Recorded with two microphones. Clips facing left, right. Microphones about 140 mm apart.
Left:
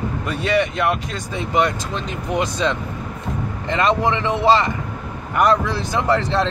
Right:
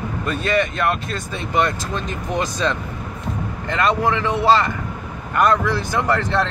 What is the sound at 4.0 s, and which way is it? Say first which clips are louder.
Speech: even; 20° left (ahead or behind).